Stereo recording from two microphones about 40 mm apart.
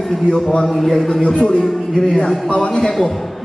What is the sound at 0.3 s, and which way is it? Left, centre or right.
Speech, left.